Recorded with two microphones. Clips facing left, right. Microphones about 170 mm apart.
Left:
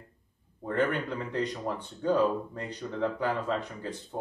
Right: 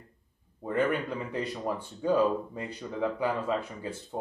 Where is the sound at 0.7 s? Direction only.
10° right (ahead or behind).